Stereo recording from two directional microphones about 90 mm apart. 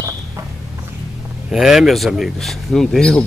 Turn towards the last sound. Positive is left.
turn(degrees=5)  # may be behind; listen again after turning